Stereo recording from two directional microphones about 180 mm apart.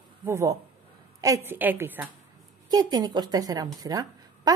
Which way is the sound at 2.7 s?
20° right (ahead or behind).